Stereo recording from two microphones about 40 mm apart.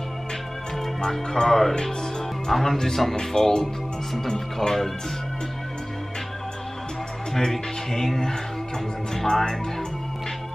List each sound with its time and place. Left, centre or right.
1.0 s speech: centre
3.6 s speech: centre
7.3 s speech: centre